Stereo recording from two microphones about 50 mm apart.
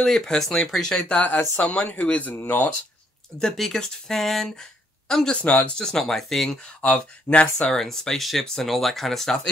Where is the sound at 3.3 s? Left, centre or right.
Centre.